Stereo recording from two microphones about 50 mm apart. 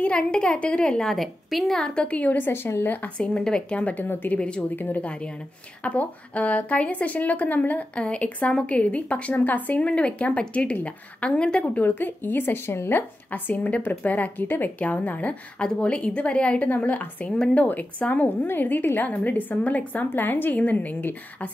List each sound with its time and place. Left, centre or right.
0.0 s a woman's voice: left
1.1 s a woman's voice: centre
1.8 s a woman's voice: left
2.3 s a woman's voice: left
3.2 s speech: centre
3.7 s speech: left
4.0 s a woman's voice: left
4.4 s a woman's voice: left
4.7 s speech: left
5.9 s speech: left
7.9 s a woman's voice: left
11.8 s a woman's voice: left
12.9 s speech: left
15.6 s a woman's voice: centre